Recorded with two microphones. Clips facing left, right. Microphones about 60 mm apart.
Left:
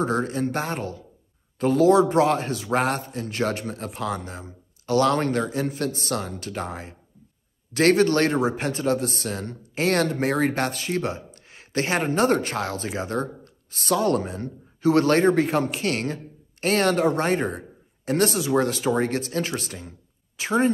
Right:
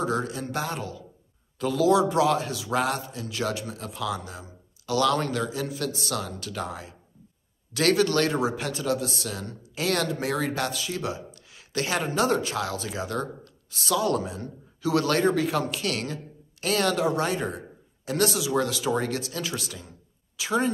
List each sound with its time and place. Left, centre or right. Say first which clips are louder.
0.0 s a man's voice: left 4 dB; left